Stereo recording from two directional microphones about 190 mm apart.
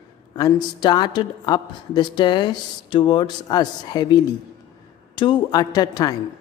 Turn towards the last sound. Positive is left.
turn(degrees=20)  # may be behind; listen again after turning